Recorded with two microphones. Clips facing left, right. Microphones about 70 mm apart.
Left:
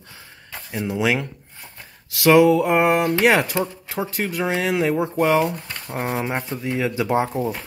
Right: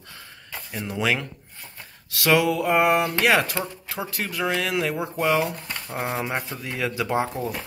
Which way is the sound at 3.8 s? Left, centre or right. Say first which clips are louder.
Left 5 dB; left.